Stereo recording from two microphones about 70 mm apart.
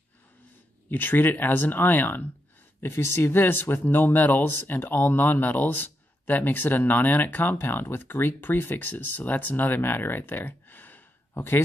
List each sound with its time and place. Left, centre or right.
0.8 s speech: left